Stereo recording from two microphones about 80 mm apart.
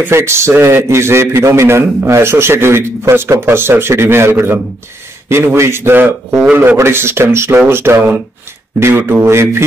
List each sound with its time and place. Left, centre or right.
0.0 s a man's voice: right
6.5 s a man's voice: centre
6.8 s a man's voice: right